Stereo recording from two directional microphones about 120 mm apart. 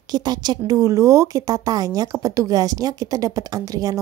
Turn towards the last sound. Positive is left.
turn(degrees=-30)  # may be behind; listen again after turning